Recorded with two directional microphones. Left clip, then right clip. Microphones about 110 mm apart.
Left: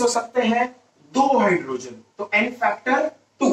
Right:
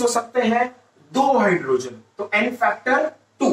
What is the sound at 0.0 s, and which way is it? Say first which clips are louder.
Speech: even; 10° left (ahead or behind).